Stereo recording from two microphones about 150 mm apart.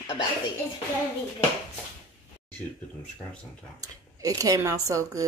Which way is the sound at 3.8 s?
25° right (ahead or behind).